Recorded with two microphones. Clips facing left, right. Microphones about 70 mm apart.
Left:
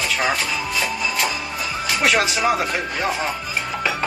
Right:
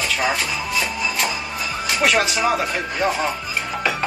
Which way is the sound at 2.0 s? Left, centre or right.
Centre.